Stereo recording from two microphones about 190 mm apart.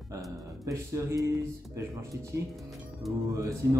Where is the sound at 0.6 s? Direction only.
15° right (ahead or behind).